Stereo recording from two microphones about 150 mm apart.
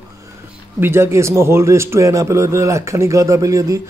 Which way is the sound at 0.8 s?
15° right (ahead or behind).